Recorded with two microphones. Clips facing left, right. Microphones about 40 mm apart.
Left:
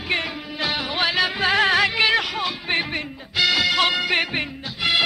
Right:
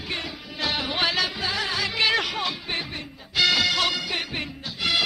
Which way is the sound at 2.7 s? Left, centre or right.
Left.